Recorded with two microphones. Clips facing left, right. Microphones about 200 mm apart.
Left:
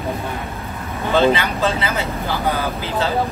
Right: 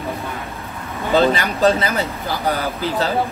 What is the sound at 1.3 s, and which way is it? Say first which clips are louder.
Speech: right 2 dB; 40° right (ahead or behind).